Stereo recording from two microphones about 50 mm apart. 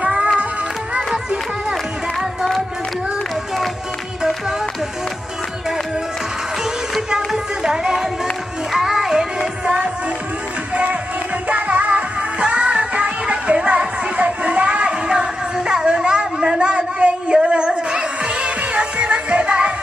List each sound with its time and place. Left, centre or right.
0.0 s music: centre
2.1 s music: centre
7.2 s music: centre
11.4 s music: right
15.0 s a sound: centre